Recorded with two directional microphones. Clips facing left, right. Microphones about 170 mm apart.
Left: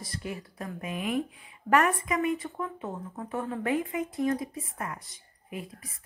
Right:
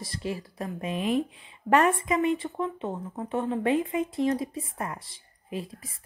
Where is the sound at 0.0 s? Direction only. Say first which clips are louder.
Right 4 dB; 25° right (ahead or behind).